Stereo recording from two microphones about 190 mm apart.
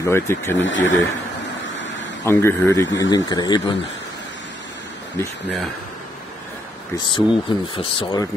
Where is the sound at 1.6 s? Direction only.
75° left (ahead or behind).